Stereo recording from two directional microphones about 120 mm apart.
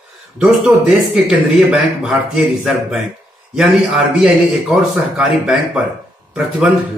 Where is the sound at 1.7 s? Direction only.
5° right (ahead or behind).